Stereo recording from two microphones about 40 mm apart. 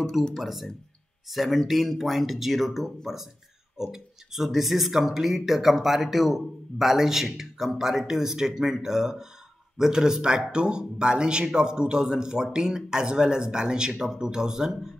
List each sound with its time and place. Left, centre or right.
0.3 s speech: centre